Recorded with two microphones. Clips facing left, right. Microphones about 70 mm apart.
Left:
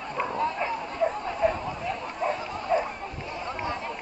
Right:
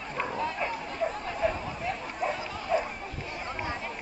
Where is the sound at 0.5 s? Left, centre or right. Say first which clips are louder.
Left 4 dB; centre.